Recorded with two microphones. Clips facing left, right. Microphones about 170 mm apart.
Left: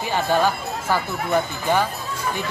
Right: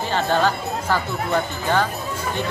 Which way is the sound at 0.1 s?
10° left (ahead or behind).